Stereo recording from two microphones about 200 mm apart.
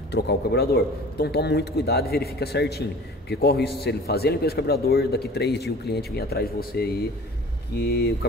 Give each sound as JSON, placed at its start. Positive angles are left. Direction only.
{"t": 0.1, "sound": "a man's voice", "side_deg": 55}